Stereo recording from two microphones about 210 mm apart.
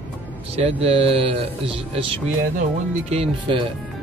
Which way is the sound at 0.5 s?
30° right (ahead or behind).